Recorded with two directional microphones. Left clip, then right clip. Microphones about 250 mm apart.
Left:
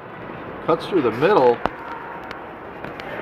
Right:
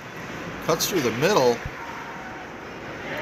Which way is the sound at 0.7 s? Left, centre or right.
Centre.